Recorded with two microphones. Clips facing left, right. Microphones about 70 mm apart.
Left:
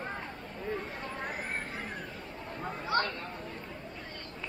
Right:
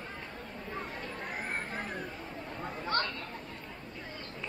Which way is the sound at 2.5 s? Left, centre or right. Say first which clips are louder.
Left 2 dB; centre.